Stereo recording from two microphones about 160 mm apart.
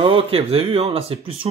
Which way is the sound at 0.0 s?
35° right (ahead or behind).